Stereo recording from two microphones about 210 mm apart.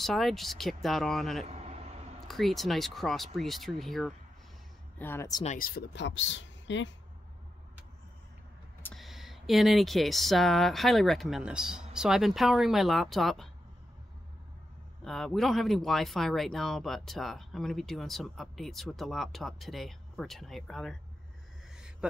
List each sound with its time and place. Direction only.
0.0 s speech: centre (ahead or behind)
1.4 s vehicle: 30° right (ahead or behind)
2.2 s speech: centre (ahead or behind)
5.4 s speech: 40° left (ahead or behind); by 6.9 s 60° left (ahead or behind)
8.8 s speech: centre (ahead or behind)
15.0 s speech: centre (ahead or behind)